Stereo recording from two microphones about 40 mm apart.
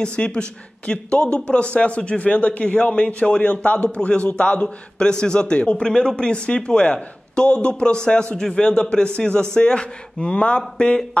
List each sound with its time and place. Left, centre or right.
0.0 s a man's voice: left